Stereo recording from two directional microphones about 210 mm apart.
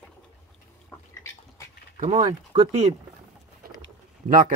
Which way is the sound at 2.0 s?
35° right (ahead or behind).